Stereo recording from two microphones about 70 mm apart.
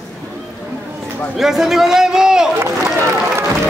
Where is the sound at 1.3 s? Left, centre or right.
Centre.